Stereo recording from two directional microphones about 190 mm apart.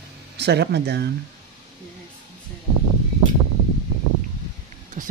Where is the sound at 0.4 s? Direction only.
60° right (ahead or behind).